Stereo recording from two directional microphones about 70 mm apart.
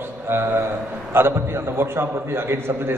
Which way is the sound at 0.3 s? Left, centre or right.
Right.